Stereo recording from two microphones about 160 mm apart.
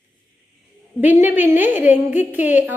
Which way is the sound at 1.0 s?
10° right (ahead or behind).